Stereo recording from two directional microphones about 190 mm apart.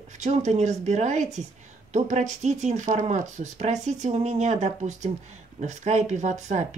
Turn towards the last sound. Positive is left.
turn(degrees=-40)  # may be behind; listen again after turning